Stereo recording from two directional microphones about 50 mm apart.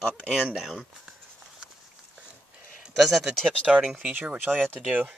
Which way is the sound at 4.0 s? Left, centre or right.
Right.